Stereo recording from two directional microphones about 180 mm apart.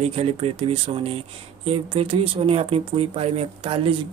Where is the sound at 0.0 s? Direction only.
35° right (ahead or behind).